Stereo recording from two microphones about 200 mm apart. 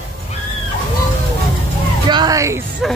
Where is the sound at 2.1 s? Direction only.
20° right (ahead or behind).